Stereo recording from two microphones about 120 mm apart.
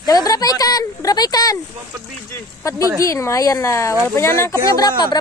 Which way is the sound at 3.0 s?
25° left (ahead or behind).